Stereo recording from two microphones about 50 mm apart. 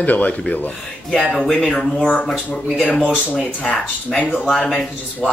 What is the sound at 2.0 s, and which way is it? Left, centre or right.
Speech, left.